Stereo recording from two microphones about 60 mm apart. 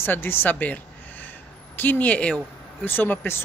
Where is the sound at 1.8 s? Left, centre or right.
Left.